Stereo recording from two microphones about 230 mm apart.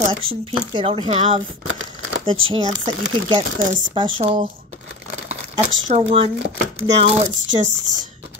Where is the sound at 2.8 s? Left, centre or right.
Right.